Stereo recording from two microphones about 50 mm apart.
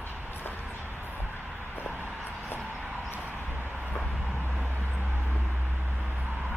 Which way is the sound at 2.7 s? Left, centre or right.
Right.